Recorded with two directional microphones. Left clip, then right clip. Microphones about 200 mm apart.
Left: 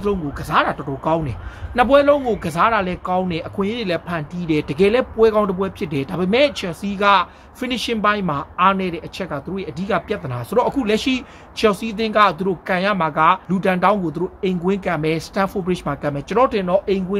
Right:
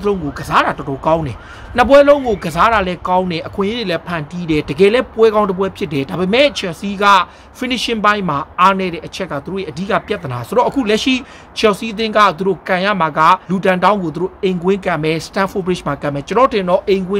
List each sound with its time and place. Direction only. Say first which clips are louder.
0.0 s speech: right 4 dB; 10° right (ahead or behind)